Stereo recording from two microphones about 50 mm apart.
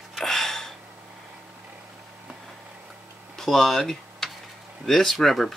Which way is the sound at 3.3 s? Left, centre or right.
Centre.